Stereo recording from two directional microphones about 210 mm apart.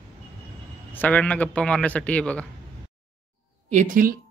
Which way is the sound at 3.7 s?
35° right (ahead or behind).